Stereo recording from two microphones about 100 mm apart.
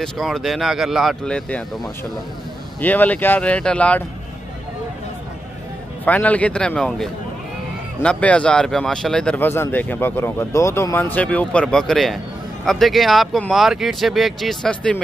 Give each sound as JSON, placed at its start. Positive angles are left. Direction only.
{"t": 0.0, "sound": "speech", "side_deg": 0}
{"t": 1.2, "sound": "speech", "side_deg": 10}
{"t": 6.0, "sound": "speech", "side_deg": 15}
{"t": 9.4, "sound": "speech", "side_deg": 20}